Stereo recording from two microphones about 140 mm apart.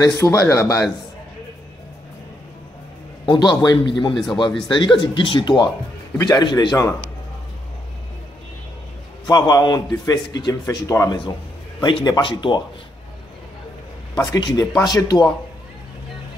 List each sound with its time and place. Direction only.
0.0 s a man's voice: 20° left (ahead or behind)
3.3 s a man's voice: 30° left (ahead or behind)
4.1 s speech: centre (ahead or behind)
4.6 s a man's voice: 35° left (ahead or behind)
9.3 s a man's voice: 30° left (ahead or behind)
14.1 s a man's voice: 30° left (ahead or behind)